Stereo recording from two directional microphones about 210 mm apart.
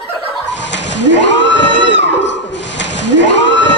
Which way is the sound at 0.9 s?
60° left (ahead or behind).